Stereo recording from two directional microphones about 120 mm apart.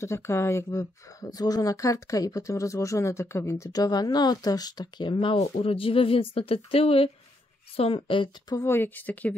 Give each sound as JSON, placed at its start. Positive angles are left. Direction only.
{"t": 0.0, "sound": "speech", "side_deg": 25}
{"t": 8.5, "sound": "speech", "side_deg": 20}